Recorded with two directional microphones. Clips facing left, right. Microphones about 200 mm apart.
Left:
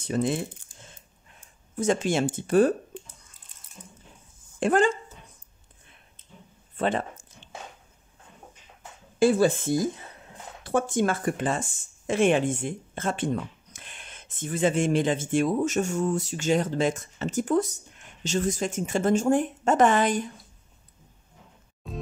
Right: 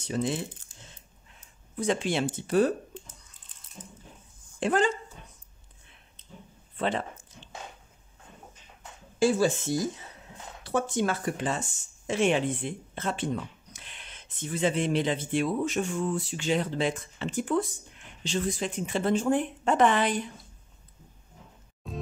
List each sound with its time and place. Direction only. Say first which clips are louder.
0.0 s speech: left 3 dB; 50° left (ahead or behind)
1.8 s speech: left 3 dB; 45° left (ahead or behind)
4.6 s speech: left 3 dB; 50° left (ahead or behind)
6.8 s speech: left 3 dB; 50° left (ahead or behind)
9.2 s speech: left 3 dB; 55° left (ahead or behind)
21.8 s music: left 1 dB; centre (ahead or behind)